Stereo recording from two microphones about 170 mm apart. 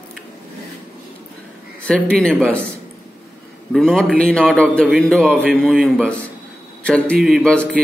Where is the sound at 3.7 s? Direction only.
5° left (ahead or behind).